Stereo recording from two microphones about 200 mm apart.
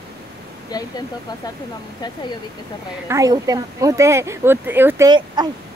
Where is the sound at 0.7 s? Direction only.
20° left (ahead or behind).